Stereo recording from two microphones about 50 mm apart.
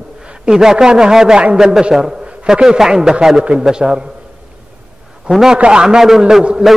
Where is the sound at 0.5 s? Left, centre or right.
Centre.